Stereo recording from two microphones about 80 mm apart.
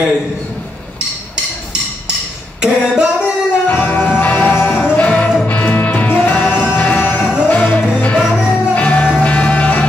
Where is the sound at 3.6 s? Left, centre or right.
Left.